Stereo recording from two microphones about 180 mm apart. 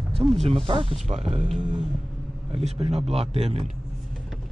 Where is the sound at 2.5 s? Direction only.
35° right (ahead or behind).